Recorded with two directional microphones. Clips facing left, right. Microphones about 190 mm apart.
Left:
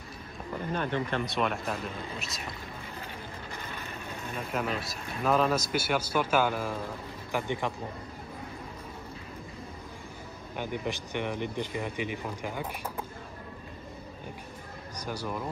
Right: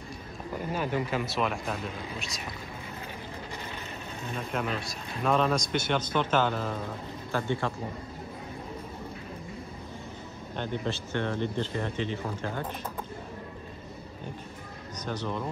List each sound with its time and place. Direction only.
0.7 s a man's voice: 10° right (ahead or behind)
4.4 s a man's voice: centre (ahead or behind)
10.5 s speech: 10° left (ahead or behind)
15.0 s speech: 10° left (ahead or behind)